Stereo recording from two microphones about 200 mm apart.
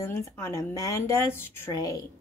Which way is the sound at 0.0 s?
15° left (ahead or behind).